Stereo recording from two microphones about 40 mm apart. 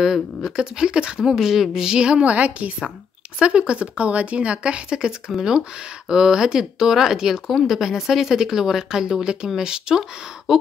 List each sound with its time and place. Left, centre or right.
0.0 s speech: centre
1.2 s speech: centre
2.2 s a woman's voice: right; by 10.6 s centre